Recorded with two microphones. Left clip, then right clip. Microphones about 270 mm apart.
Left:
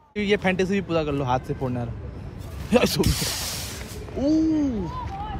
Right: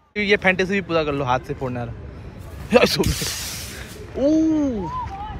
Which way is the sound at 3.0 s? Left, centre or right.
Left.